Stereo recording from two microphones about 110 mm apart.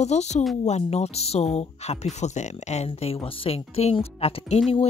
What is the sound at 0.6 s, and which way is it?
Speech, 80° left.